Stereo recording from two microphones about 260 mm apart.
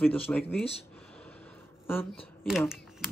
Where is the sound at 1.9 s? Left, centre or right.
Centre.